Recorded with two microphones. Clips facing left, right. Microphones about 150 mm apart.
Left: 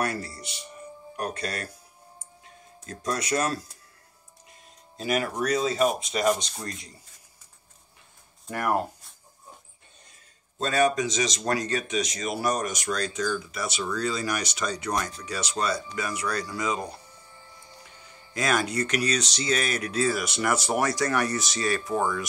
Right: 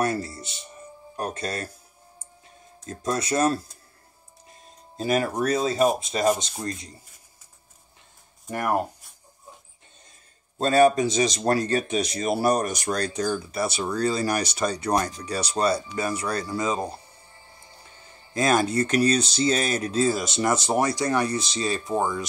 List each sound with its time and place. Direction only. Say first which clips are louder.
0.0 s music: right 4 dB; 25° right (ahead or behind)
1.1 s speech: right 2 dB; 25° right (ahead or behind)
2.9 s speech: right 2 dB; 25° right (ahead or behind)
6.0 s speech: right 2 dB; 25° right (ahead or behind)
8.5 s speech: right 1 dB; 20° right (ahead or behind)
10.6 s speech: right 5 dB; 30° right (ahead or behind)
18.3 s speech: right 5 dB; 30° right (ahead or behind)